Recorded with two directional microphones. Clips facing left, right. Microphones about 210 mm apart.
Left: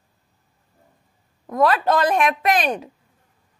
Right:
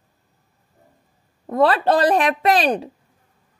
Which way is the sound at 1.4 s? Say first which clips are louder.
Right 2 dB; 30° right (ahead or behind).